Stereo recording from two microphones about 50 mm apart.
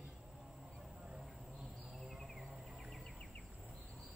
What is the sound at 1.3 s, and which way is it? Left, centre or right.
Insect, centre.